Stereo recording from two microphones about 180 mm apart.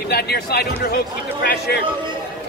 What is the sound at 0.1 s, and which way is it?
Speech, 65° left (ahead or behind).